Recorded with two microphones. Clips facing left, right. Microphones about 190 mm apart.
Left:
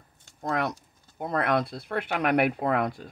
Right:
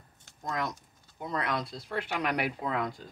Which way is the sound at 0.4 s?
60° left (ahead or behind).